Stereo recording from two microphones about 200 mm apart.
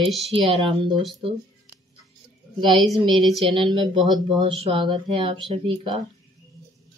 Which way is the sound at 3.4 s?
25° right (ahead or behind).